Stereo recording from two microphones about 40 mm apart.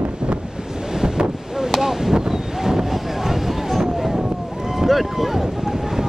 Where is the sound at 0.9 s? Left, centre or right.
Centre.